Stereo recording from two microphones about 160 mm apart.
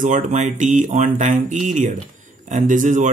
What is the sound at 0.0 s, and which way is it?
Speech, 50° right (ahead or behind).